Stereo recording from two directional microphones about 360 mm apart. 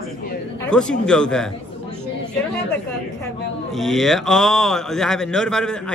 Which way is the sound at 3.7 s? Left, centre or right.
Centre.